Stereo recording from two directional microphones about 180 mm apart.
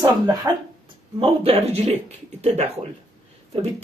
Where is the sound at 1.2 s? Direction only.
35° right (ahead or behind).